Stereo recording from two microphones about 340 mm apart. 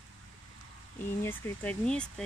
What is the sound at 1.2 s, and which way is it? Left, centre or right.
Speech, centre.